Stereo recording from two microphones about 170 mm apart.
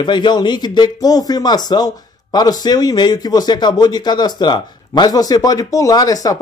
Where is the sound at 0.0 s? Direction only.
25° left (ahead or behind).